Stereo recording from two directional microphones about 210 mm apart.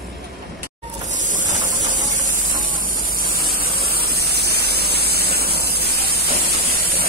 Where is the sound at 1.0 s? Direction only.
35° right (ahead or behind).